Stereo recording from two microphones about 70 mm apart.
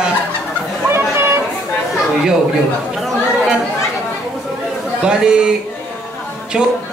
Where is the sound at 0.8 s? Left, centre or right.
Right.